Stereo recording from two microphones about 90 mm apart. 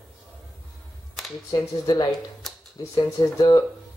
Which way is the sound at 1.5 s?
45° left (ahead or behind).